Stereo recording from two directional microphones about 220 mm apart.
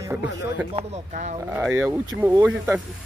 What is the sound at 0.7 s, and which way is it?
Speech, 30° right (ahead or behind).